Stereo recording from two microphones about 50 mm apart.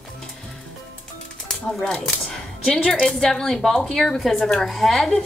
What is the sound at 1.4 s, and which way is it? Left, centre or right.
Speech, centre.